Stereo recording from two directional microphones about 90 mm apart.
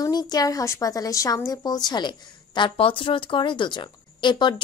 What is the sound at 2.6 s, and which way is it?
Speech, 75° left (ahead or behind).